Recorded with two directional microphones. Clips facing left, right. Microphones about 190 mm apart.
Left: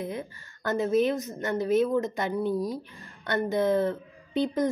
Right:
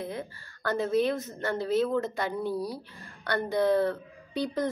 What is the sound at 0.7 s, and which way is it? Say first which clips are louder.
A woman's voice: left 2 dB; 20° left (ahead or behind).